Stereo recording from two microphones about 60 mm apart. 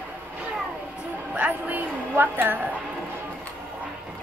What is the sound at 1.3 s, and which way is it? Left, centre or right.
A woman's voice, right.